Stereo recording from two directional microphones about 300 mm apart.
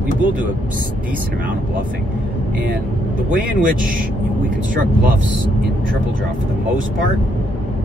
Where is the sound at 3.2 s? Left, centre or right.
Right.